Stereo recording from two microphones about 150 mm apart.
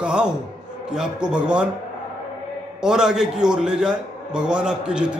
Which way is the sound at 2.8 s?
5° right (ahead or behind).